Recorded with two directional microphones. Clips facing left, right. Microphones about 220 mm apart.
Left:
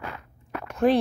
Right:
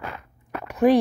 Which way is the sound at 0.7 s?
15° right (ahead or behind).